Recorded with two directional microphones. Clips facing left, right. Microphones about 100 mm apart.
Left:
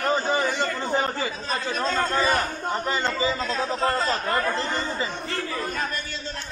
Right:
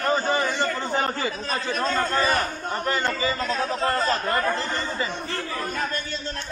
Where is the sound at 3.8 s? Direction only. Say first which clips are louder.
Even; 20° left (ahead or behind).